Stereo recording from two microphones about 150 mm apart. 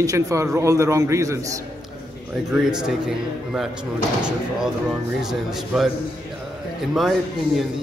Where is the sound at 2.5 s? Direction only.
5° right (ahead or behind).